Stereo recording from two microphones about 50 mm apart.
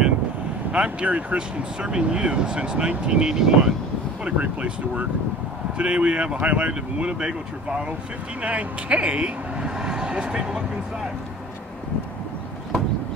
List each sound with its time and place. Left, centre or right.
0.7 s speech: right
4.2 s speech: right